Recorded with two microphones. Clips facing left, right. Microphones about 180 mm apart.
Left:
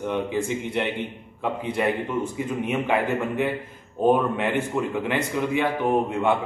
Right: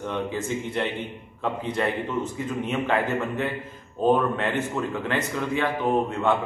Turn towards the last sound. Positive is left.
turn(degrees=15)  # may be behind; listen again after turning